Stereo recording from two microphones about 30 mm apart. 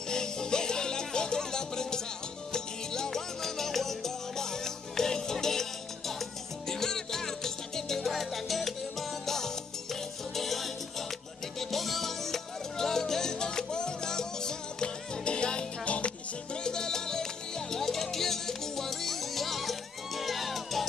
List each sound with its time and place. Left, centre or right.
0.1 s music: left
10.3 s salsa music: centre
11.7 s music: centre